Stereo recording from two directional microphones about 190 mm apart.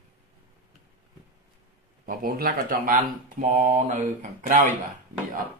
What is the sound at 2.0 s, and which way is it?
Speech, 50° right (ahead or behind).